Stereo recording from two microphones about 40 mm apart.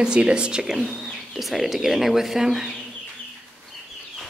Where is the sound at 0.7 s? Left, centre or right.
Centre.